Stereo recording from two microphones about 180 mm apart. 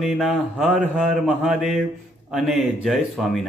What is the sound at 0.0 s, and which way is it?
A man's voice, centre (ahead or behind).